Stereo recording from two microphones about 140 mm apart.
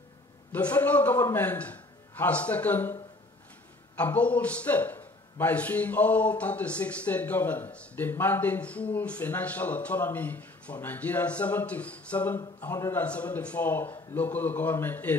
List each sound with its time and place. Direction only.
0.5 s a man's voice: 10° left (ahead or behind)